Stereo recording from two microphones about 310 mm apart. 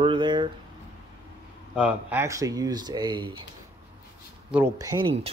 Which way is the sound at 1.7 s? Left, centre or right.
Centre.